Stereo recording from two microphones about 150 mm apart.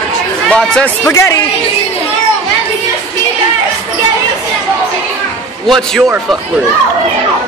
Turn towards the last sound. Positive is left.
turn(degrees=0)  # may be behind; listen again after turning